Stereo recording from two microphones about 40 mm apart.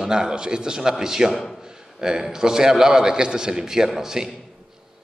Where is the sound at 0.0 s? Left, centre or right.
Centre.